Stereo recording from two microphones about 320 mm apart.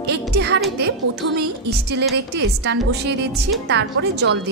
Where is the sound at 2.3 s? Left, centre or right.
Right.